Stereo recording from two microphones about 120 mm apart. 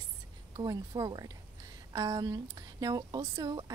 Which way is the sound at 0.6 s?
35° right (ahead or behind).